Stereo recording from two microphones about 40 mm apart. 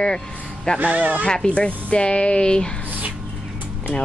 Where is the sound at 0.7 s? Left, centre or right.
Right.